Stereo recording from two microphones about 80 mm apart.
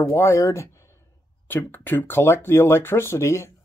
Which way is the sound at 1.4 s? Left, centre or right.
Left.